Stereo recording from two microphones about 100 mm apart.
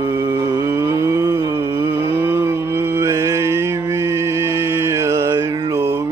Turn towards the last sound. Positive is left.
turn(degrees=-40)  # may be behind; listen again after turning